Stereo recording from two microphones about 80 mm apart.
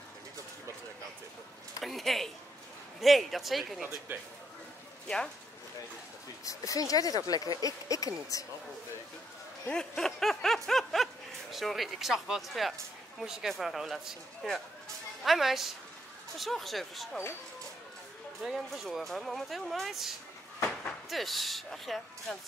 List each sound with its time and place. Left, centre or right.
1.8 s a sound: centre
3.0 s speech: centre
4.1 s a man's voice: right
5.0 s speech: centre
6.4 s speech: left
9.7 s speech: centre
18.4 s speech: centre